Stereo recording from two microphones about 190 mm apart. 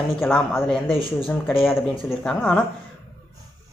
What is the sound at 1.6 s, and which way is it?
Speech, centre (ahead or behind).